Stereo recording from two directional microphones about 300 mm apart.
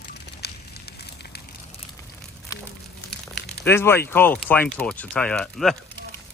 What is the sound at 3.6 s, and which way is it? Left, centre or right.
Speech, centre.